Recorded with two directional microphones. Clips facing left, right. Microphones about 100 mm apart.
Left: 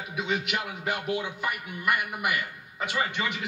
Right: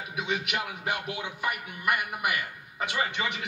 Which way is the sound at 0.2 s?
15° right (ahead or behind).